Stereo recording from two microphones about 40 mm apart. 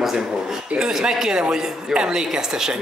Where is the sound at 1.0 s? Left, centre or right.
Centre.